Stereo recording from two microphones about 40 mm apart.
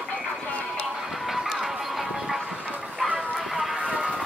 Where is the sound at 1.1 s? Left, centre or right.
Centre.